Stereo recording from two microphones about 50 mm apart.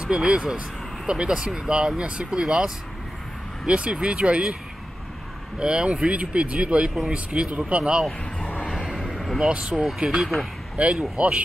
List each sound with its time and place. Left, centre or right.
0.0 s speech: centre
5.6 s speech: centre
8.6 s vehicle: centre
9.5 s speech: centre